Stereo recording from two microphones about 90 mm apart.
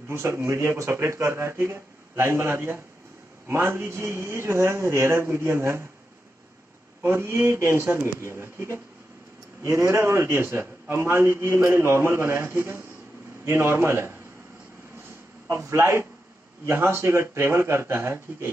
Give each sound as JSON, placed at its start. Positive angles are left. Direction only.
{"t": 0.1, "sound": "a man's voice", "side_deg": -30}
{"t": 7.0, "sound": "a man's voice", "side_deg": -30}
{"t": 15.4, "sound": "a man's voice", "side_deg": -30}